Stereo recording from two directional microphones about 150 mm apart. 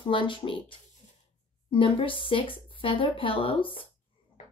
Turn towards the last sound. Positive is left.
turn(degrees=35)  # may be behind; listen again after turning